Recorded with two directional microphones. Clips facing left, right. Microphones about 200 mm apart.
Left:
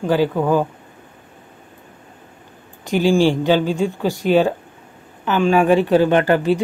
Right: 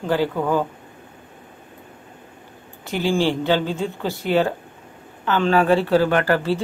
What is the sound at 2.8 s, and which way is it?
Speech, 15° left (ahead or behind).